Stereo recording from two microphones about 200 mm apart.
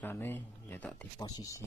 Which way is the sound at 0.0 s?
10° left (ahead or behind).